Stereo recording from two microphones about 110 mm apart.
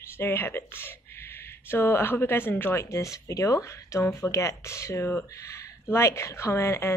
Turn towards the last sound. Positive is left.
turn(degrees=25)  # may be behind; listen again after turning